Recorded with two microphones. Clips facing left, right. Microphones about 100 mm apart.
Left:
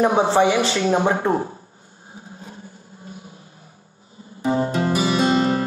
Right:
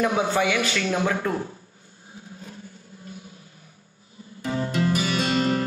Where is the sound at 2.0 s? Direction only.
35° left (ahead or behind).